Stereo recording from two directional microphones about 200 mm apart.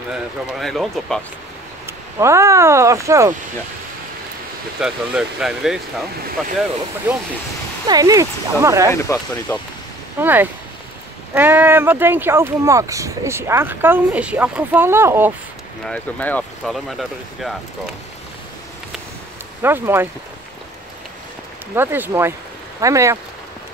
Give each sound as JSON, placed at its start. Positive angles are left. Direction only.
{"t": 0.1, "sound": "speech", "side_deg": 0}
{"t": 1.9, "sound": "speech", "side_deg": -15}
{"t": 4.7, "sound": "speech", "side_deg": -5}
{"t": 7.8, "sound": "speech", "side_deg": -20}
{"t": 8.9, "sound": "speech", "side_deg": 15}
{"t": 10.2, "sound": "speech", "side_deg": -10}
{"t": 15.8, "sound": "speech", "side_deg": 5}
{"t": 19.6, "sound": "speech", "side_deg": -10}
{"t": 21.7, "sound": "speech", "side_deg": -10}